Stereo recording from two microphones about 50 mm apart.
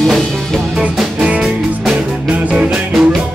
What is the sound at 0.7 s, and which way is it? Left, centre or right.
Music, centre.